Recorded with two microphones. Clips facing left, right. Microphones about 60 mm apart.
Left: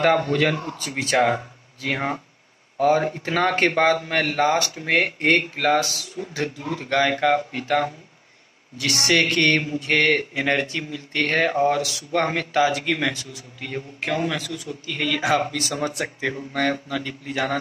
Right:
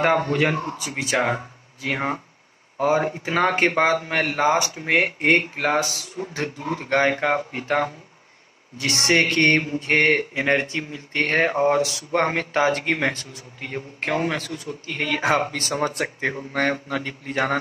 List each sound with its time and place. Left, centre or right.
0.0 s speech: right
0.7 s speech: centre
1.9 s speech: centre; by 17.6 s right